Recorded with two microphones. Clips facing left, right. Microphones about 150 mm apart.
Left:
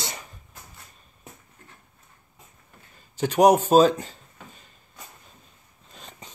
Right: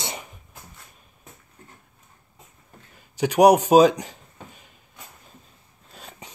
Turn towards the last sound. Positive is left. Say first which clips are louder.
# right 2 dB
turn(degrees=-10)  # may be behind; listen again after turning